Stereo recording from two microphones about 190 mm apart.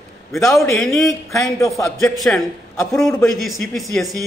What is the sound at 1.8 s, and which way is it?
Speech, 15° left (ahead or behind).